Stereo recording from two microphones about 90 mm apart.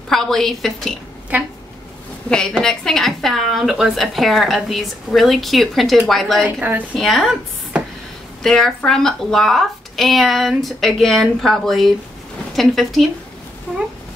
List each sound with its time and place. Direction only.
0.1 s a woman's voice: 5° left (ahead or behind)
1.3 s speech: 15° right (ahead or behind)
2.2 s a woman's voice: 10° left (ahead or behind)
6.4 s a woman's voice: 20° right (ahead or behind)
7.0 s a woman's voice: centre (ahead or behind)